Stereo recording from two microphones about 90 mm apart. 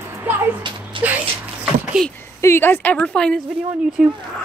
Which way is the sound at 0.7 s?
60° right (ahead or behind).